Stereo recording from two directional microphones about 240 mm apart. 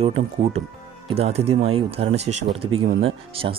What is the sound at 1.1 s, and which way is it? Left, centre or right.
Speech, right.